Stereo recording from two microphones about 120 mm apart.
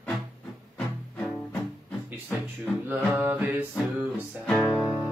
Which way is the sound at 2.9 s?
15° right (ahead or behind).